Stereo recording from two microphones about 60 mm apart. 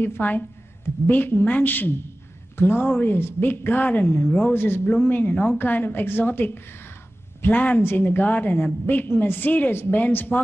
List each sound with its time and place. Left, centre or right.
0.0 s a woman's voice: left